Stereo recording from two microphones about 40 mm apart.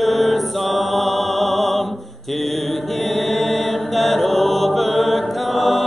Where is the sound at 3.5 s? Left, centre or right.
Centre.